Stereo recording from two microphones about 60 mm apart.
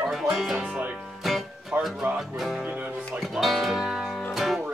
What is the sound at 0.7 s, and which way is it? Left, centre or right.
Music, right.